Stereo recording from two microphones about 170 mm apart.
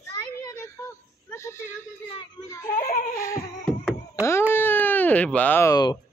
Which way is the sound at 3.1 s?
15° left (ahead or behind).